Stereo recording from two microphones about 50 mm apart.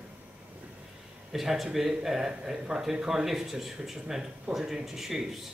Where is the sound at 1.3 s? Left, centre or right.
Centre.